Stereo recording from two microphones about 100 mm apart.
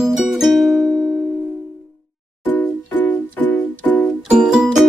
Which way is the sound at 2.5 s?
20° left (ahead or behind).